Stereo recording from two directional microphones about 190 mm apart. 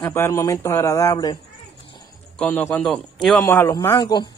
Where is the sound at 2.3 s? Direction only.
10° left (ahead or behind).